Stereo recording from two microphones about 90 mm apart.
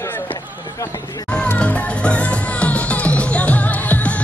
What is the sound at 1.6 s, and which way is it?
Music, 15° left (ahead or behind).